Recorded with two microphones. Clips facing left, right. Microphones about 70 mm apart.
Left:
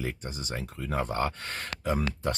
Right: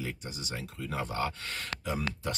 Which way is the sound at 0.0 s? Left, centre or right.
Left.